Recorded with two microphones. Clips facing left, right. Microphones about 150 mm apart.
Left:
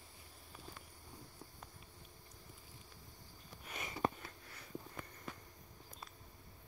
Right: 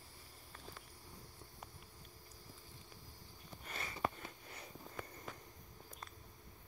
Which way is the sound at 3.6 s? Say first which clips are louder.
Left 2 dB; 15° left (ahead or behind).